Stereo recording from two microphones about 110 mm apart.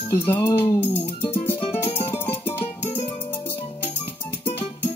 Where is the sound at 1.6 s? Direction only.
55° left (ahead or behind).